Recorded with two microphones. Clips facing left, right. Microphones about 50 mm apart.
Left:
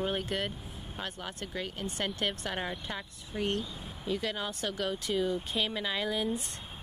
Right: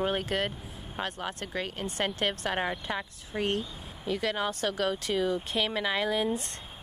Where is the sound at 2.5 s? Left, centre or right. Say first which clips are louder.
Right 5 dB; right.